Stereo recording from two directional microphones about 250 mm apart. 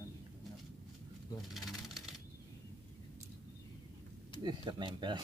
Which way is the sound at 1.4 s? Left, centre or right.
Centre.